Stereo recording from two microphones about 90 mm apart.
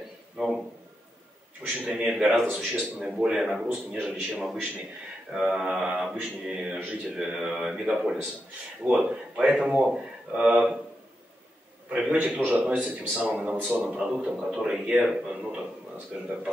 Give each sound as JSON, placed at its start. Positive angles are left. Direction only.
{"t": 0.4, "sound": "a sound", "side_deg": -5}
{"t": 1.9, "sound": "a man's voice", "side_deg": -10}
{"t": 3.6, "sound": "speech", "side_deg": -15}
{"t": 4.0, "sound": "a man's voice", "side_deg": 0}
{"t": 11.9, "sound": "speech", "side_deg": -15}